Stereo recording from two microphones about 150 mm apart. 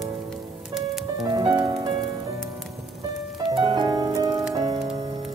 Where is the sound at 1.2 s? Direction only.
30° right (ahead or behind).